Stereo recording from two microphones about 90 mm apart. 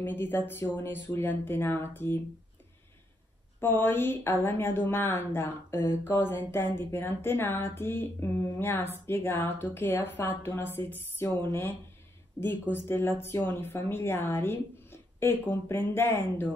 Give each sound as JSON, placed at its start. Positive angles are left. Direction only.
{"t": 0.0, "sound": "a woman's voice", "side_deg": 25}
{"t": 3.6, "sound": "a woman's voice", "side_deg": 25}